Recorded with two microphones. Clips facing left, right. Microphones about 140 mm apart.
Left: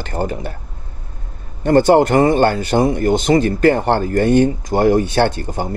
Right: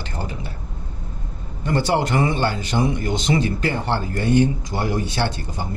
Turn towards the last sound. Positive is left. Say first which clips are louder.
# left 8 dB
turn(degrees=55)  # may be behind; listen again after turning